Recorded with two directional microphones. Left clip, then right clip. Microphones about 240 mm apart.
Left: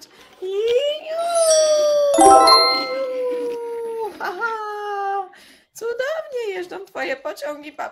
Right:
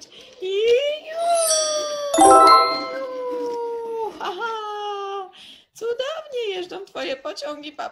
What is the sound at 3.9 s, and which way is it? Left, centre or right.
Dog, centre.